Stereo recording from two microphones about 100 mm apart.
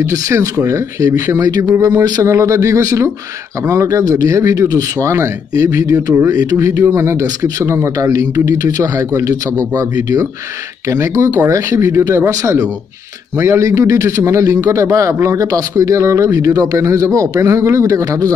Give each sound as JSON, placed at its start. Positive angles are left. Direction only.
{"t": 0.0, "sound": "a man's voice", "side_deg": -35}
{"t": 10.9, "sound": "a man's voice", "side_deg": -30}